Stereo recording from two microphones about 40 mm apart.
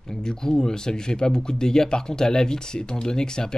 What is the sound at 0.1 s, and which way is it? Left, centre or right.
Speech, centre.